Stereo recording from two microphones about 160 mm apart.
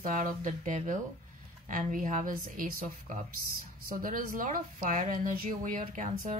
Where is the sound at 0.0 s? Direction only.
55° right (ahead or behind).